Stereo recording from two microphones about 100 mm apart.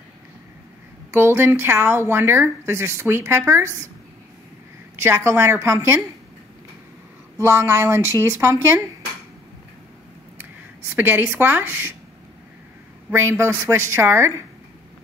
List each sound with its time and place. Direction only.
1.1 s speech: 25° right (ahead or behind)
4.9 s speech: 30° right (ahead or behind)
7.3 s speech: 30° right (ahead or behind)
10.3 s a sound: 20° right (ahead or behind)
13.1 s speech: 25° right (ahead or behind)